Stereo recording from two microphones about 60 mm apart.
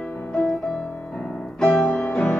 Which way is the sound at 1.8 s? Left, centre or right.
Left.